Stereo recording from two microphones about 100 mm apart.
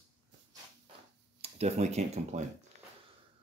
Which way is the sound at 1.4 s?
90° right.